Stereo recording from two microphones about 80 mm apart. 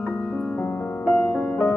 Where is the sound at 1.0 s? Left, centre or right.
Centre.